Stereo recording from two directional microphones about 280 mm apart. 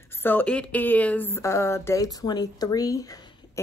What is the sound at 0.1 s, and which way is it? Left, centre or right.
Speech, centre.